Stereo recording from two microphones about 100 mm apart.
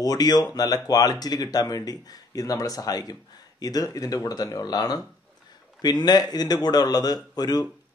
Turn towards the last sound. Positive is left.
turn(degrees=40)  # may be behind; listen again after turning